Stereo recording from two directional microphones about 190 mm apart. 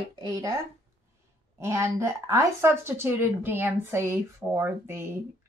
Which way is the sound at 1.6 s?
15° right (ahead or behind).